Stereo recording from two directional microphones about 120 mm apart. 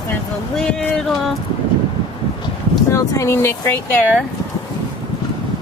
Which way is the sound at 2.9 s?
25° left (ahead or behind).